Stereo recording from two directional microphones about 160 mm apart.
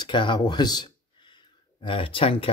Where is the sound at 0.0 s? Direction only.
30° left (ahead or behind).